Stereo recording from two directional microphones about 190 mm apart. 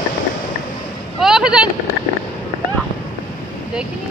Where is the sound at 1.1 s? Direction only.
5° right (ahead or behind).